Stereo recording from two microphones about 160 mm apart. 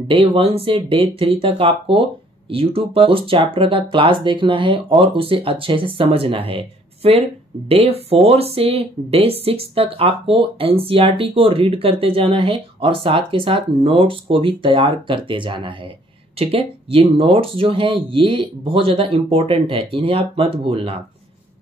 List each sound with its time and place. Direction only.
0.1 s speech: 35° right (ahead or behind)